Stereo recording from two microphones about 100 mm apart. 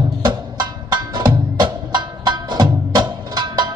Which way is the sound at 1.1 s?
50° right (ahead or behind).